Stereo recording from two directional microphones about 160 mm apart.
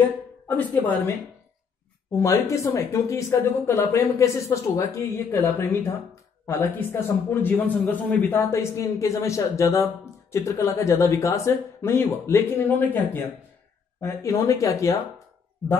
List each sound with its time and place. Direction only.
0.5 s speech: 10° left (ahead or behind)
2.1 s speech: 20° left (ahead or behind)
15.6 s speech: 10° left (ahead or behind)